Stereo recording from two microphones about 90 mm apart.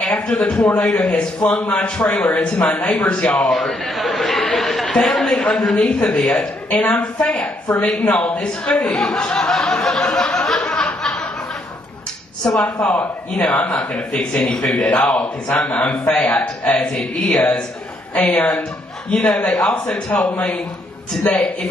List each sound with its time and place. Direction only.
0.0 s a man's voice: 5° left (ahead or behind)
12.4 s a man's voice: 5° left (ahead or behind)
20.1 s a man's voice: 20° left (ahead or behind)